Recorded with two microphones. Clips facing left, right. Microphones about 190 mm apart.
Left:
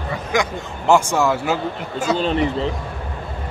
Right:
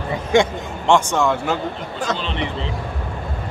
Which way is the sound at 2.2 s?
45° left (ahead or behind).